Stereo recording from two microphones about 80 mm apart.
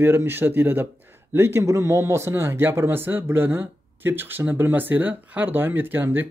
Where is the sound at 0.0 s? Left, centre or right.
Right.